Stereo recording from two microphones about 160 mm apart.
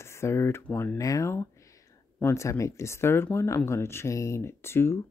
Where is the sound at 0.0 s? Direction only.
15° left (ahead or behind).